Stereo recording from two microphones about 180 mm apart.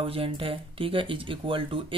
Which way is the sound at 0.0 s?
30° right (ahead or behind).